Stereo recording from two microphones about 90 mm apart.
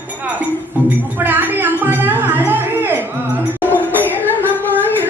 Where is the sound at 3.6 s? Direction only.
20° left (ahead or behind).